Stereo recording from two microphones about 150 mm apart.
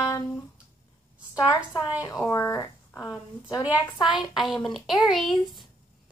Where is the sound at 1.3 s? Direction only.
25° left (ahead or behind).